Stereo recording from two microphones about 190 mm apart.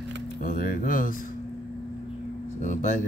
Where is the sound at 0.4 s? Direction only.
50° left (ahead or behind).